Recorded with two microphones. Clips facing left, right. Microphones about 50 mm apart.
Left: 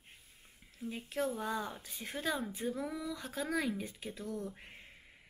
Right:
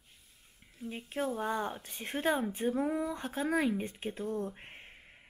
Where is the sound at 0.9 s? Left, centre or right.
Right.